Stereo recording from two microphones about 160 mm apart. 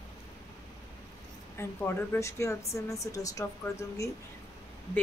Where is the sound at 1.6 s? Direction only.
15° left (ahead or behind).